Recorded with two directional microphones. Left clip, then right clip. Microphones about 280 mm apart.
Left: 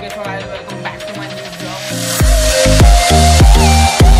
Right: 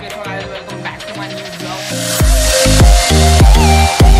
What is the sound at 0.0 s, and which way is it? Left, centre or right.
Music, centre.